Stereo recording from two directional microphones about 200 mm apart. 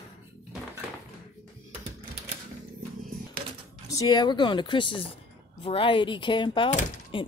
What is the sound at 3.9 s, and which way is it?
Speech, 20° left (ahead or behind).